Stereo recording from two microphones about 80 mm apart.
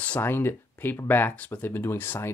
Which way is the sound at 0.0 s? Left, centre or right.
Left.